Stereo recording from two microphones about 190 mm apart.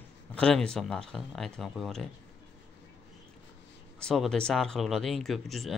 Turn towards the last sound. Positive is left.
turn(degrees=0)  # may be behind; listen again after turning